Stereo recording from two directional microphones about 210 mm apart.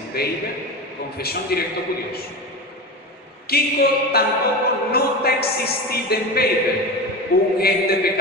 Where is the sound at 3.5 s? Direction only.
50° left (ahead or behind).